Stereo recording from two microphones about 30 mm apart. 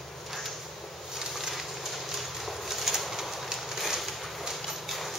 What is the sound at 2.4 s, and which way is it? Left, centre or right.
Bird, centre.